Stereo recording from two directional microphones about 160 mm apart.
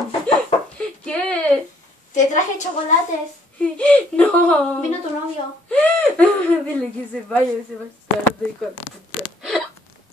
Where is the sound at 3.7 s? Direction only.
5° left (ahead or behind).